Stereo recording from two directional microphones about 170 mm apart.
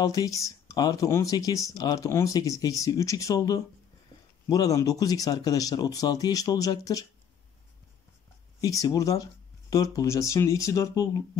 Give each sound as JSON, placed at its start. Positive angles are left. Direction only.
{"t": 0.0, "sound": "speech", "side_deg": 20}
{"t": 8.5, "sound": "speech", "side_deg": 20}